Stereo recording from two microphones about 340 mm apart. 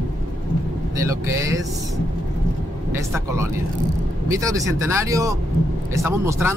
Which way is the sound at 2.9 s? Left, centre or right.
Centre.